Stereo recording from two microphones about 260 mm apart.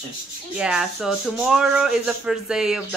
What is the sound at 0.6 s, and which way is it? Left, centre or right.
Speech, centre.